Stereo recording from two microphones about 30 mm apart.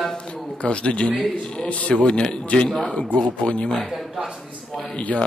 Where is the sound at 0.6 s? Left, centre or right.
Left.